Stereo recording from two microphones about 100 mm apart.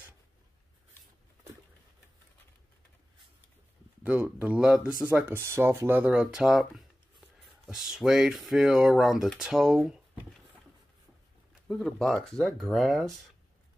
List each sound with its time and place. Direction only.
4.0 s speech: 15° right (ahead or behind)
5.1 s speech: 20° right (ahead or behind); by 9.9 s 5° right (ahead or behind)
11.6 s speech: 5° left (ahead or behind)